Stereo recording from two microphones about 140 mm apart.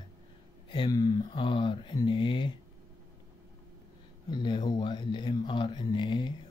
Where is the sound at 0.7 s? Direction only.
30° left (ahead or behind).